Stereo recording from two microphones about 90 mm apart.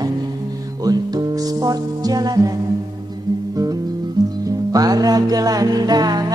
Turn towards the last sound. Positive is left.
turn(degrees=-50)  # may be behind; listen again after turning